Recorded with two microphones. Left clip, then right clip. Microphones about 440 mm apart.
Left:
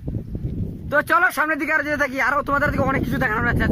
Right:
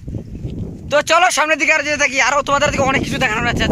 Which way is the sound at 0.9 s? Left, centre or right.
Centre.